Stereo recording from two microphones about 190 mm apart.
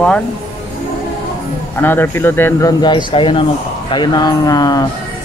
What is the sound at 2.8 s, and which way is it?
Speech, 25° left (ahead or behind).